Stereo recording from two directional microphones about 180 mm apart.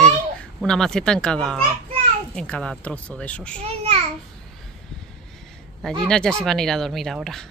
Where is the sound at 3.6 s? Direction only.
35° right (ahead or behind).